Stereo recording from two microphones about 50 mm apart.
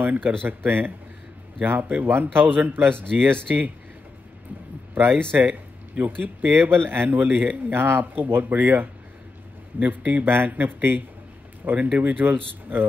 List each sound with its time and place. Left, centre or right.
0.0 s speech: right
4.9 s speech: right
7.2 s speech: right